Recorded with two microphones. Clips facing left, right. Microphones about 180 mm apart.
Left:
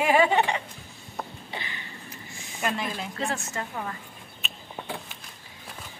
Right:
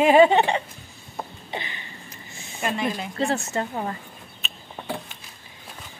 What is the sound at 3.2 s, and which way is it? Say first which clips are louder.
Speech: right 8 dB; 30° right (ahead or behind).